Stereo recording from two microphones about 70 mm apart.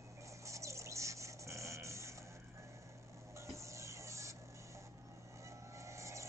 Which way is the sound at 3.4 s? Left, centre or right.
Right.